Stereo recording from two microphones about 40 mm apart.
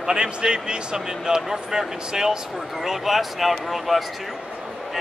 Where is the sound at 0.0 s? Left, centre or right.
Right.